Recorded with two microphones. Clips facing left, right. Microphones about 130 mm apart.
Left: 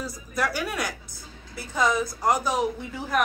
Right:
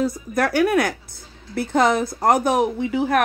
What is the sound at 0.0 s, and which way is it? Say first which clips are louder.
Speech: right 8 dB; 60° right (ahead or behind).